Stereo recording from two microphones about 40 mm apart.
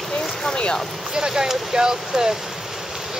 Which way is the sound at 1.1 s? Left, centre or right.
Centre.